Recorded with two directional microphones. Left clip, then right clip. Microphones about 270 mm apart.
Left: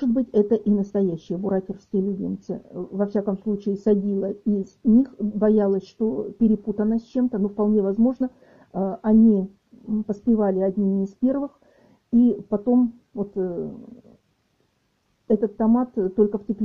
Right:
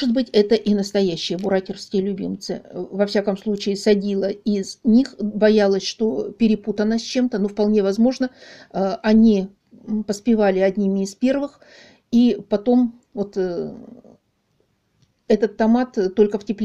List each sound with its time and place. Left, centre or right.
0.1 s speech: right
5.9 s speech: right
15.2 s speech: right